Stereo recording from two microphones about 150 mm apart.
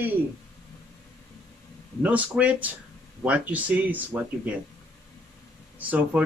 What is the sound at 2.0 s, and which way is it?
Speech, 10° right (ahead or behind).